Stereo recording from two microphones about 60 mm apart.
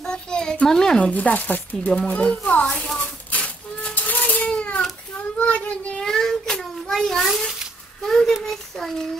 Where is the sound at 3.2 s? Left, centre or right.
Left.